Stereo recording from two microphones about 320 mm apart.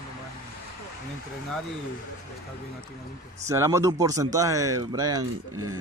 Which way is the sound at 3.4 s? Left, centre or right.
Centre.